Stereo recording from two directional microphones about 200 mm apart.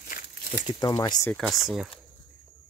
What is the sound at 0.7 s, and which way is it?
Speech, 20° left (ahead or behind).